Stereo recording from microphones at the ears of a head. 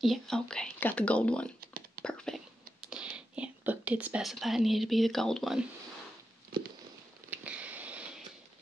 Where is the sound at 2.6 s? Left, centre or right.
Right.